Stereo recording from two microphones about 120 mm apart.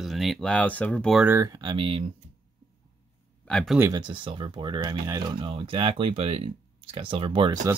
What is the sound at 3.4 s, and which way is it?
Speech, 5° left (ahead or behind).